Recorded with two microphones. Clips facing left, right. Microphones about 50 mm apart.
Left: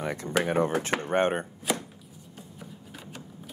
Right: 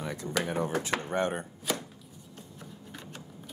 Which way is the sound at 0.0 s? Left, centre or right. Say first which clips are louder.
Left 4 dB; left.